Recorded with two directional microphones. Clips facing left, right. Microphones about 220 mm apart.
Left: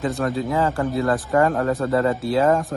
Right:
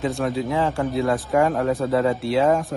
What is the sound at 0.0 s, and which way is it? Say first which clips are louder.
Speech: even; centre (ahead or behind).